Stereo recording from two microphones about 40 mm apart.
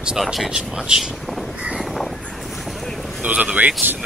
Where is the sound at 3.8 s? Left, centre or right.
Right.